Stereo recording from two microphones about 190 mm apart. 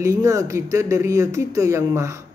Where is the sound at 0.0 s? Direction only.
15° right (ahead or behind).